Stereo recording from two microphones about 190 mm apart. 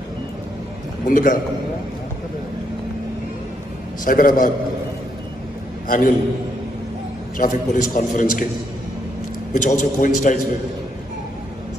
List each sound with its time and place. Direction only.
1.0 s a man's voice: 45° left (ahead or behind)
4.0 s a man's voice: 45° left (ahead or behind)
5.9 s a man's voice: 45° left (ahead or behind)
7.3 s a man's voice: 45° left (ahead or behind)
9.5 s a man's voice: 40° left (ahead or behind)